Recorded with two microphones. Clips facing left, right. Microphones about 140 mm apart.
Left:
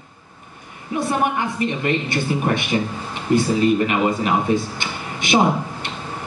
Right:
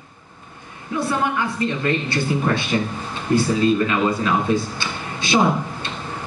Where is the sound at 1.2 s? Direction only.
20° left (ahead or behind).